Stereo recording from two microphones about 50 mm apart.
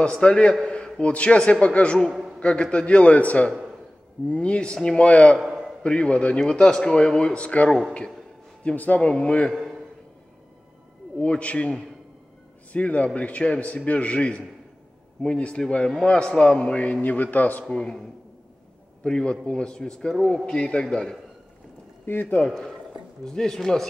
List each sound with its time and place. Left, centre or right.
0.0 s a man's voice: left
0.7 s a sound: centre
1.1 s a man's voice: left
5.4 s a sound: centre
5.8 s a man's voice: left
9.5 s a sound: centre
11.1 s a man's voice: left
12.7 s a man's voice: left
17.6 s a man's voice: centre
19.0 s a man's voice: centre
20.8 s a man's voice: centre
22.0 s speech: left
22.5 s a man's voice: centre